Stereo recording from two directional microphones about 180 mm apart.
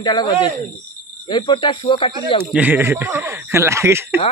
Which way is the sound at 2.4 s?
10° right (ahead or behind).